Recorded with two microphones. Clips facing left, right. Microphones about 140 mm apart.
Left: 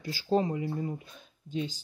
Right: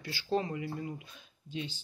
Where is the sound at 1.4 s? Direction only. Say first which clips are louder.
Left 6 dB; 40° left (ahead or behind).